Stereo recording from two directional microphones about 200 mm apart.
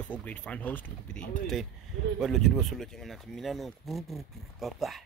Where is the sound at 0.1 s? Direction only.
5° left (ahead or behind).